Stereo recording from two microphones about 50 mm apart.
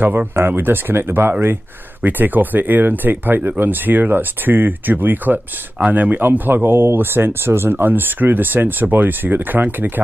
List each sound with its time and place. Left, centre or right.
0.0 s speech: right